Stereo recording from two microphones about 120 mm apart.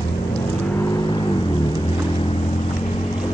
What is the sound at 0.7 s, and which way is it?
Vehicle, 25° left (ahead or behind).